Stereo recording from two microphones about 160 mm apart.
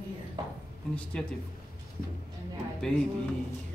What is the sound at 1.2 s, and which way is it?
Speech, 5° left (ahead or behind).